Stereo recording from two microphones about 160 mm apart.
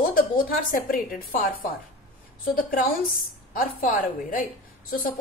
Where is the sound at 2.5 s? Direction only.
60° left (ahead or behind).